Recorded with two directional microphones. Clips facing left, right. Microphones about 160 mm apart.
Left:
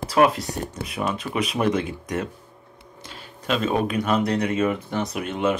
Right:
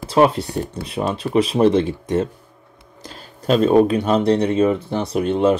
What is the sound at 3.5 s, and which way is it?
Speech, 35° right (ahead or behind).